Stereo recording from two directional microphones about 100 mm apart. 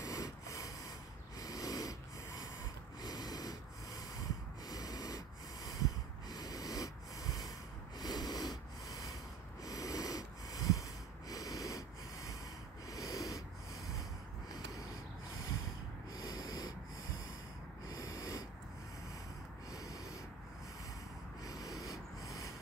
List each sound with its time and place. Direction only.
0.0 s a sound: 35° left (ahead or behind)
1.4 s snoring: 40° left (ahead or behind)
3.0 s snort: 40° left (ahead or behind)
8.0 s a sound: 40° left (ahead or behind)
9.7 s snort: 35° left (ahead or behind)
16.1 s snort: 40° left (ahead or behind)
17.8 s snort: 35° left (ahead or behind)
19.7 s snort: 35° left (ahead or behind)
21.5 s snort: 35° left (ahead or behind)
21.8 s a sound: 35° left (ahead or behind)